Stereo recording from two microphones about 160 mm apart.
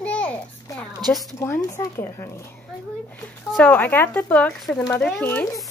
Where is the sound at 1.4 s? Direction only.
15° left (ahead or behind).